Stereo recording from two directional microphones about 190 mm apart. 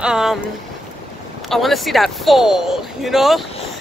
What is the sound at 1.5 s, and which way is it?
Speech, centre (ahead or behind).